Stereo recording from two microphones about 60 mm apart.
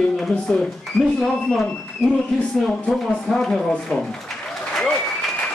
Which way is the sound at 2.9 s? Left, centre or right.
Centre.